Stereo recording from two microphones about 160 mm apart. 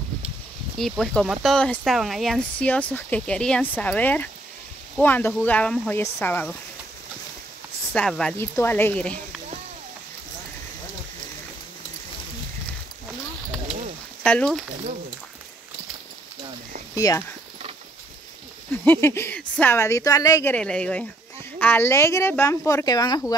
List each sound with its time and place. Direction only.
0.7 s speech: centre (ahead or behind)
7.9 s speech: 5° left (ahead or behind)
14.2 s speech: 5° left (ahead or behind)
16.9 s speech: 20° left (ahead or behind)
18.7 s speech: 15° left (ahead or behind)
20.5 s speech: 5° left (ahead or behind); by 23.3 s 25° left (ahead or behind)